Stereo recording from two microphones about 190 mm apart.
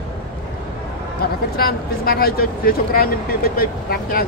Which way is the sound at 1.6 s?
50° left (ahead or behind).